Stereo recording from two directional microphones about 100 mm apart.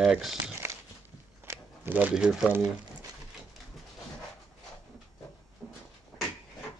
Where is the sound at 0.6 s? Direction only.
30° right (ahead or behind).